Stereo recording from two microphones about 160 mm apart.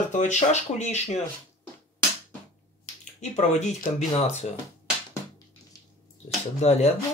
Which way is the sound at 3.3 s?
50° left (ahead or behind).